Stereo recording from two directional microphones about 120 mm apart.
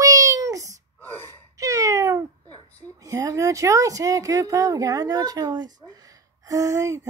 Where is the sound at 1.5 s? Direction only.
30° right (ahead or behind).